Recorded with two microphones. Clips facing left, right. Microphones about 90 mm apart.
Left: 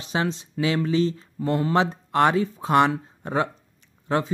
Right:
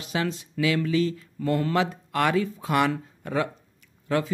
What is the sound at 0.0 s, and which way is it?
Speech, 25° left (ahead or behind).